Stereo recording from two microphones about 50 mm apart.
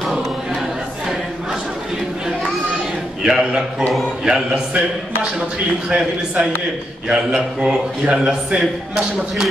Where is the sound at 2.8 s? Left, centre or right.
Centre.